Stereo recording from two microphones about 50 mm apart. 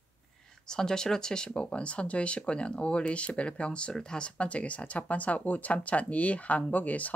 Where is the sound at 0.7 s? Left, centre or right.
Centre.